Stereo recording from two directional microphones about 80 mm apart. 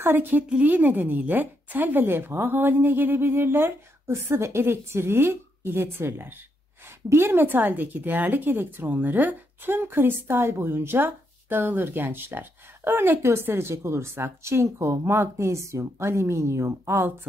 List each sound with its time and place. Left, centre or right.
0.0 s speech: right